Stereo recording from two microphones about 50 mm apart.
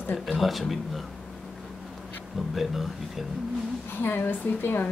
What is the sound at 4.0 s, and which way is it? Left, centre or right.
Speech, left.